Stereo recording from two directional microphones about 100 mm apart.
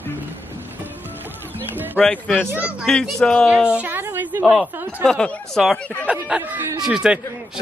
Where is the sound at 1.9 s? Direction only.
10° left (ahead or behind).